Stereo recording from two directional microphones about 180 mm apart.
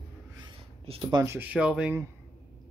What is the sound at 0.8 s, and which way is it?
Speech, 30° right (ahead or behind).